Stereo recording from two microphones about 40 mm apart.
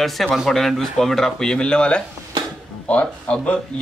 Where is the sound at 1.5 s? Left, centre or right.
Left.